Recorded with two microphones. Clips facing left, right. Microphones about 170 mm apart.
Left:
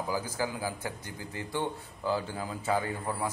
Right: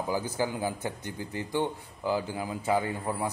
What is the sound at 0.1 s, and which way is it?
A man's voice, 20° right (ahead or behind).